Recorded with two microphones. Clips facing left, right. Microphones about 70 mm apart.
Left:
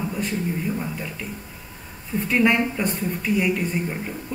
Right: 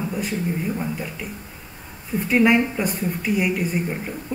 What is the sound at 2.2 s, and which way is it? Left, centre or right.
Speech, centre.